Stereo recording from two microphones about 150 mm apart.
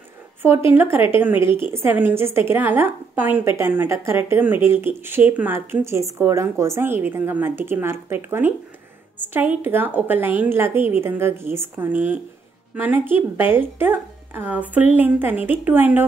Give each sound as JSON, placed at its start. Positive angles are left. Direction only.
{"t": 0.4, "sound": "a woman's voice", "side_deg": -15}